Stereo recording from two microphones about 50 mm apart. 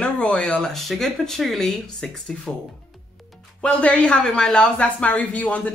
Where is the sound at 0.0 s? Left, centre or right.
Left.